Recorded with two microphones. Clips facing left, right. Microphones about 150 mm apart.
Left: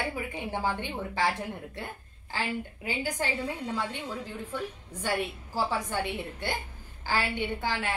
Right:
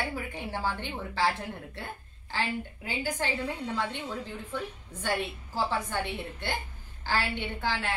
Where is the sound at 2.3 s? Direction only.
10° left (ahead or behind).